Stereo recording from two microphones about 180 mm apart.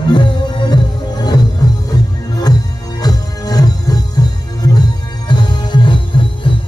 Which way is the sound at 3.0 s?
20° left (ahead or behind).